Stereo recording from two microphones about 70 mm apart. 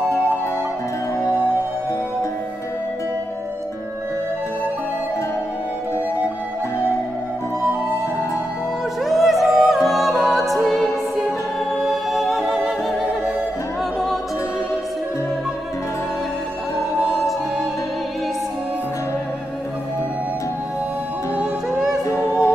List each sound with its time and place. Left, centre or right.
9.0 s music: centre
22.0 s music: left